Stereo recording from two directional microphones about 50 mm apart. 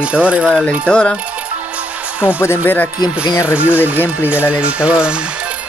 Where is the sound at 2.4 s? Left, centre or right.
Left.